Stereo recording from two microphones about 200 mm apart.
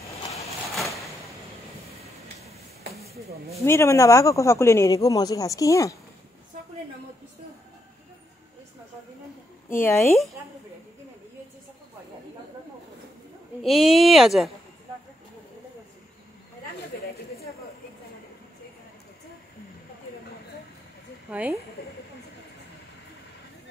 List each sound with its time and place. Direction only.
3.6 s a man's voice: 15° left (ahead or behind)
9.7 s a man's voice: 10° left (ahead or behind)
13.6 s speech: centre (ahead or behind)
21.3 s speech: 10° right (ahead or behind)
21.8 s speech: 50° left (ahead or behind)